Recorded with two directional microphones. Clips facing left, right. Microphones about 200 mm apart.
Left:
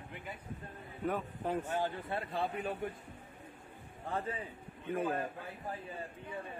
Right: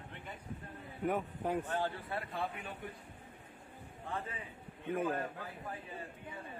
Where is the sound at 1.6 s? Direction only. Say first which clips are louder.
Left 1 dB; 10° left (ahead or behind).